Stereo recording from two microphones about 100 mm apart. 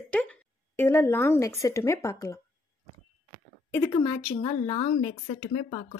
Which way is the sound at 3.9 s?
70° left (ahead or behind).